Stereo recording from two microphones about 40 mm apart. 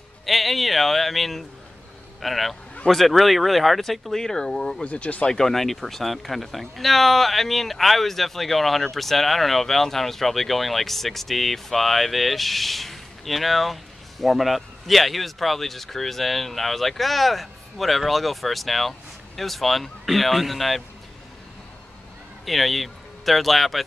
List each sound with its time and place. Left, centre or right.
0.2 s speech: centre
4.8 s speech: left
5.3 s speech: centre
22.4 s speech: centre